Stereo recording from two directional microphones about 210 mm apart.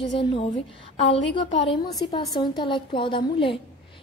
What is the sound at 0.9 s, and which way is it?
Speech, 30° left (ahead or behind).